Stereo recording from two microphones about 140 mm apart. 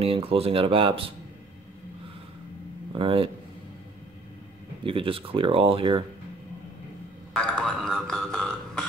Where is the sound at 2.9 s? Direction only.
40° right (ahead or behind).